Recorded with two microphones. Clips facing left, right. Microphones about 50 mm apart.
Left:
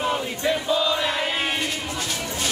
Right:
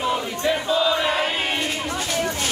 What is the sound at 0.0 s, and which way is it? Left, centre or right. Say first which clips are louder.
Crowd: right 1 dB; left.